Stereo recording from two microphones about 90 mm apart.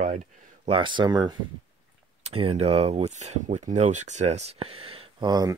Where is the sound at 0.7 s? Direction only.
65° right (ahead or behind).